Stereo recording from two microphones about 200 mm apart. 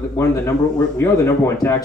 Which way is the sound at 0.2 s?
15° left (ahead or behind).